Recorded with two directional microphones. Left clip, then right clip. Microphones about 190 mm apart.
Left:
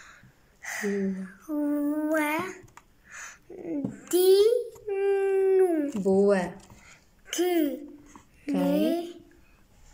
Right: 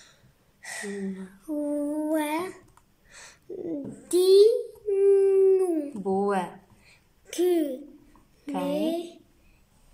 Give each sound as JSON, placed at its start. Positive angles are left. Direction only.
{"t": 0.0, "sound": "a sound", "side_deg": -25}
{"t": 4.5, "sound": "humming", "side_deg": -20}
{"t": 5.3, "sound": "howl", "side_deg": -25}
{"t": 6.0, "sound": "speech", "side_deg": 0}
{"t": 6.9, "sound": "a sound", "side_deg": -20}
{"t": 8.5, "sound": "speech", "side_deg": 0}
{"t": 8.7, "sound": "a woman's voice", "side_deg": -20}